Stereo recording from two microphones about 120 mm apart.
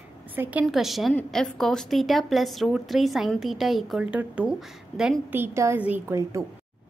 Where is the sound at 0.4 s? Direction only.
10° right (ahead or behind).